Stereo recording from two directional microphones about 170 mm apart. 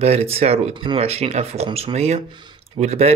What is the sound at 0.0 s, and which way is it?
Speech, 35° right (ahead or behind).